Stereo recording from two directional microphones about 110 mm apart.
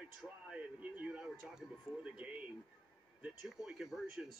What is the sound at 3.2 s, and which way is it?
Speech, 5° right (ahead or behind).